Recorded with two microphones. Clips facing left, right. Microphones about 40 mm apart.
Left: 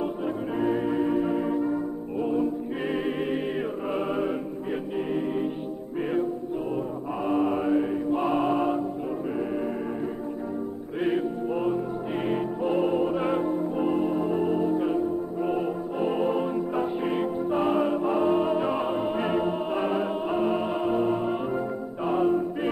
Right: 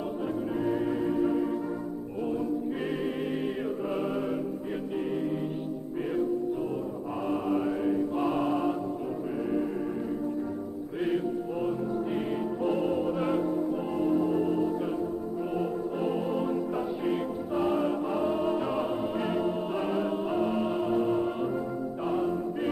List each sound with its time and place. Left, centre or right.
0.6 s music: left
7.2 s music: left
11.0 s music: left